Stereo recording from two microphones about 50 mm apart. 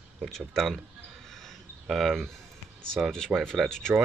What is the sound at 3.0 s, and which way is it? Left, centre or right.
Speech, centre.